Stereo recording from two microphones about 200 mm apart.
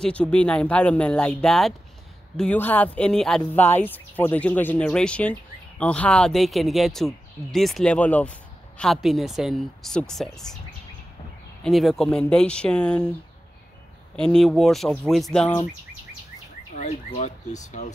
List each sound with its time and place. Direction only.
0.0 s speech: 5° left (ahead or behind)
11.6 s speech: centre (ahead or behind)
14.2 s speech: centre (ahead or behind)
16.7 s speech: 35° left (ahead or behind)